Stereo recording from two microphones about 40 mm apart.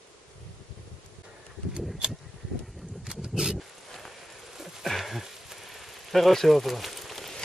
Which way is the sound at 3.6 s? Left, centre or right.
Centre.